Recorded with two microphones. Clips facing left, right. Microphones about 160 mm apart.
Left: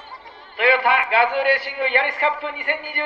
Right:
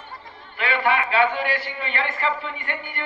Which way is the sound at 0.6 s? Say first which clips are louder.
Left 4 dB; 70° left (ahead or behind).